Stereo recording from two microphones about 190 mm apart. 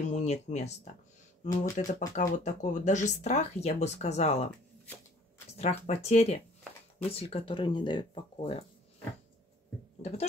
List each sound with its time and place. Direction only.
0.1 s speech: 35° left (ahead or behind)
5.5 s speech: 35° left (ahead or behind)